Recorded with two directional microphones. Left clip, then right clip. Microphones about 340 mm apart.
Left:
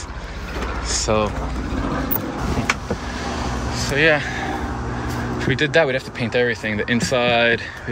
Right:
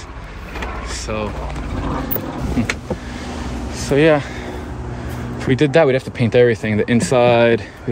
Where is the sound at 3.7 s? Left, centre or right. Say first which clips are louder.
Right 3 dB; right.